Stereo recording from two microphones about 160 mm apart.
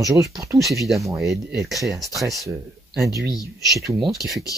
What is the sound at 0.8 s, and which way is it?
Speech, centre (ahead or behind).